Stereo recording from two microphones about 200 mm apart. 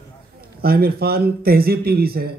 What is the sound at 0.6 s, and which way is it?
Speech, 50° right (ahead or behind).